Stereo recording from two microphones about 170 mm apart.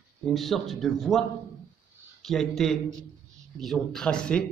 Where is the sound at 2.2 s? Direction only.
Centre (ahead or behind).